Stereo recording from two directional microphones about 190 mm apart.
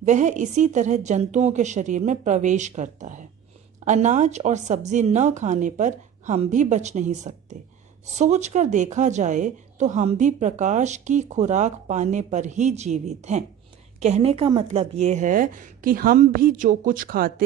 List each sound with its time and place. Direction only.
0.0 s a woman's voice: 40° right (ahead or behind)